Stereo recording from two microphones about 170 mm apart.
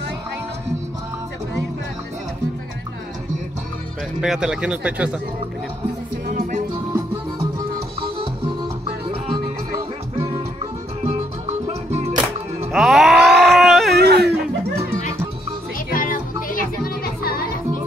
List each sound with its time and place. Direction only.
4.2 s speech: 5° right (ahead or behind)
6.3 s music: 50° right (ahead or behind)
9.0 s music: 30° right (ahead or behind)
11.1 s music: 40° right (ahead or behind)
12.7 s music: centre (ahead or behind)
13.4 s a sound: centre (ahead or behind)
13.9 s wail: 75° right (ahead or behind)
15.9 s music: 55° left (ahead or behind)